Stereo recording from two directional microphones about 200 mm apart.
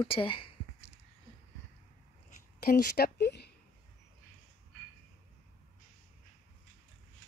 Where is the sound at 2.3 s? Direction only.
50° left (ahead or behind).